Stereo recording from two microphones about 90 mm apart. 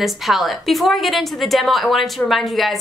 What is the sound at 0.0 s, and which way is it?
A woman's voice, centre (ahead or behind).